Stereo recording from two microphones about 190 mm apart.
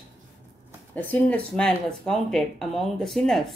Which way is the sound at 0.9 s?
10° left (ahead or behind).